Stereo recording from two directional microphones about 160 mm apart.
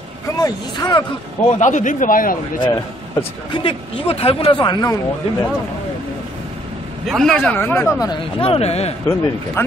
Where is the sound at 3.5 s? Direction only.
35° left (ahead or behind).